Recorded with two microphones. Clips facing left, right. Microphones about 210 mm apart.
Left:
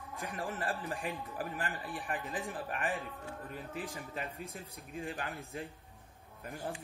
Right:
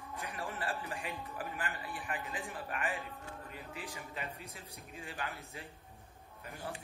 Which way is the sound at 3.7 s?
50° left (ahead or behind).